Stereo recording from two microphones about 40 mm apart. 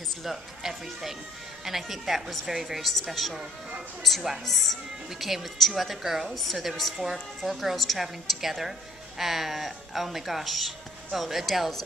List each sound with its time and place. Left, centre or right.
0.6 s speech: centre
4.5 s speech: centre